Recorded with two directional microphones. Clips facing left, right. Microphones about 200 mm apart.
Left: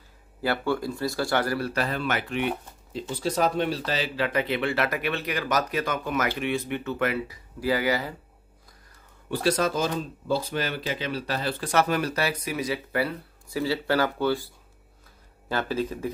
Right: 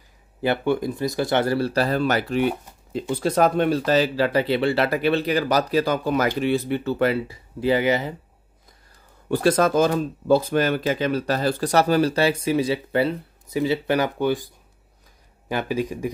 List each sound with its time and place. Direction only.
0.4 s speech: 20° right (ahead or behind); by 2.5 s 40° right (ahead or behind)
2.9 s speech: 55° right (ahead or behind); by 8.1 s 20° right (ahead or behind)
9.3 s speech: 50° right (ahead or behind); by 16.1 s 15° right (ahead or behind)